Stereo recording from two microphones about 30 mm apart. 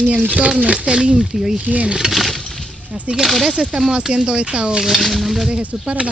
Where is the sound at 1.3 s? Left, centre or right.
Centre.